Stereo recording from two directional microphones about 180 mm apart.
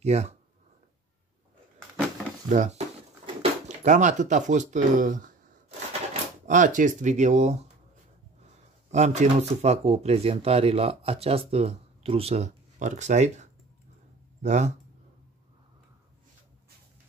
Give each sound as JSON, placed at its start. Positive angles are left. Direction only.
{"t": 0.0, "sound": "speech", "side_deg": -40}
{"t": 2.5, "sound": "speech", "side_deg": -40}
{"t": 6.4, "sound": "speech", "side_deg": -45}
{"t": 8.9, "sound": "speech", "side_deg": -40}